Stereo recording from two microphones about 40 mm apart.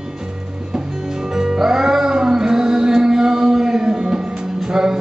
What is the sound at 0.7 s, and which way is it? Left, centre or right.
Music, centre.